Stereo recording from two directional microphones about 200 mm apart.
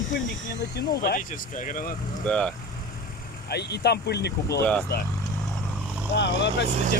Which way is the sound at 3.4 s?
55° left (ahead or behind).